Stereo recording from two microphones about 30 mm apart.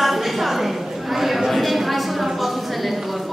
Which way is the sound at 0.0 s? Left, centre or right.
Centre.